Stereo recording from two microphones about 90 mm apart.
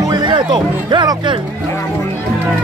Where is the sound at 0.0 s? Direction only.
50° right (ahead or behind).